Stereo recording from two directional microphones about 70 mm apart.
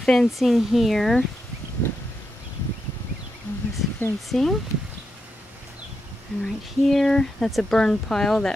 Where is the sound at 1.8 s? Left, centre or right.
Left.